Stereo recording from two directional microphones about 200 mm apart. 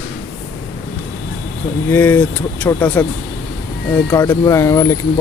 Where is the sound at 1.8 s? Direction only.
10° left (ahead or behind).